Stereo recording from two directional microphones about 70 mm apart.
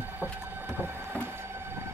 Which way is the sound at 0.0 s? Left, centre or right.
Right.